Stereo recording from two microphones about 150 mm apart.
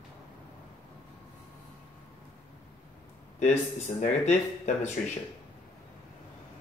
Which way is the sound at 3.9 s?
50° left (ahead or behind).